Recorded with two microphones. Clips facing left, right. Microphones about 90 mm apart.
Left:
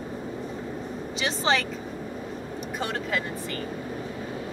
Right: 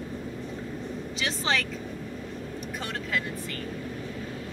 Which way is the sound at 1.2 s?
5° left (ahead or behind).